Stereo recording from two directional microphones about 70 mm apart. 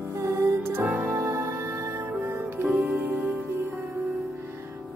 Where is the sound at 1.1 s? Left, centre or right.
Right.